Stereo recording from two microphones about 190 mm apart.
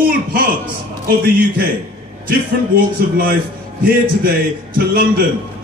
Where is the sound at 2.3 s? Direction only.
50° right (ahead or behind).